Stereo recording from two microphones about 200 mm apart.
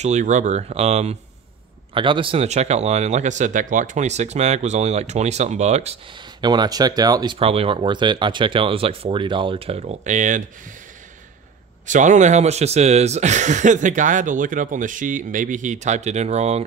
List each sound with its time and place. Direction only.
0.0 s speech: 35° right (ahead or behind)
6.4 s speech: 20° right (ahead or behind); by 10.4 s 40° right (ahead or behind)
11.8 s speech: 40° right (ahead or behind)